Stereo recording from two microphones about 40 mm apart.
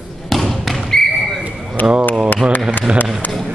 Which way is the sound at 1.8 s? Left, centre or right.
Left.